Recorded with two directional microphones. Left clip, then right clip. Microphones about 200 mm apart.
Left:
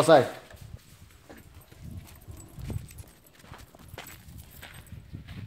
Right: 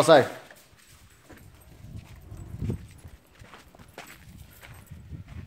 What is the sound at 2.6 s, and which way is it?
Dog, 35° left (ahead or behind).